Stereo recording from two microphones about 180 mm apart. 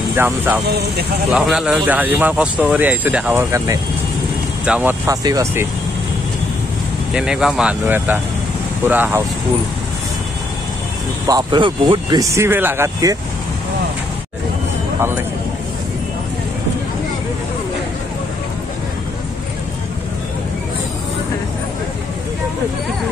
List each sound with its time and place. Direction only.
0.1 s speech: 10° right (ahead or behind)
0.7 s speech: 65° right (ahead or behind)
1.3 s speech: 5° right (ahead or behind)
7.2 s speech: 5° right (ahead or behind)
11.2 s speech: 25° right (ahead or behind)